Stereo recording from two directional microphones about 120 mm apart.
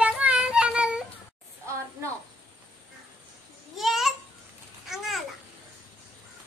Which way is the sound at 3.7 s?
Centre (ahead or behind).